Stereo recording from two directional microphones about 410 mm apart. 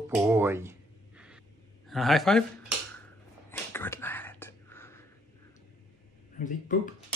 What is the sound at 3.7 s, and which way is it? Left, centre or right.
Whispering, centre.